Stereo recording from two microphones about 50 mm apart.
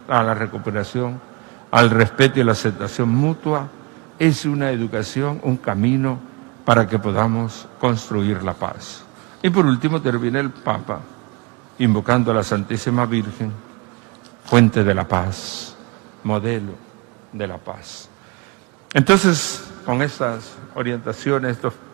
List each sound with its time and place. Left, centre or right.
0.1 s a man's voice: centre
14.6 s a man's voice: centre
18.9 s a man's voice: centre